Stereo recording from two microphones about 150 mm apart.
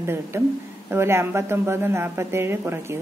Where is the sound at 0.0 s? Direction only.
15° right (ahead or behind).